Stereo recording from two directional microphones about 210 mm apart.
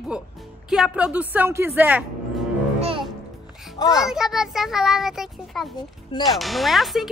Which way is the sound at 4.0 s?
Centre (ahead or behind).